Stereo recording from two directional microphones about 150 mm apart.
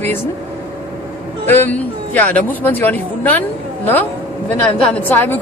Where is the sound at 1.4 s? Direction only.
15° left (ahead or behind).